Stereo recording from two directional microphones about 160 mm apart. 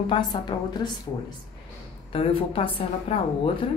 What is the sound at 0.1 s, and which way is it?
Speech, 30° left (ahead or behind).